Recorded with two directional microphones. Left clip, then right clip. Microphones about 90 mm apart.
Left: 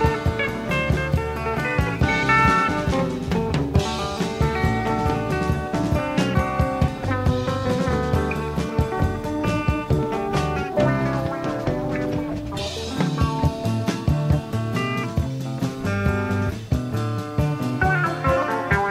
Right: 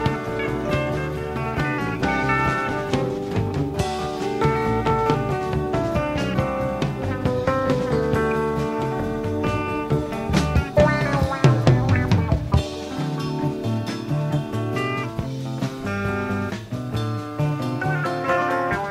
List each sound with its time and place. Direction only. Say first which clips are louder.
0.0 s music: left 2 dB; 30° right (ahead or behind)
2.0 s music: left 4 dB; 30° right (ahead or behind)
4.4 s music: right 4 dB; 30° right (ahead or behind)
10.3 s music: right 7 dB; 25° left (ahead or behind)
17.4 s music: left 3 dB; 30° right (ahead or behind)